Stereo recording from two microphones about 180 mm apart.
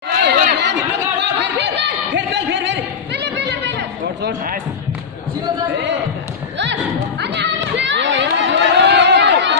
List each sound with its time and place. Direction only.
0.2 s chatter: 75° right (ahead or behind)
3.3 s a sound: 70° right (ahead or behind)
6.6 s music: 75° right (ahead or behind)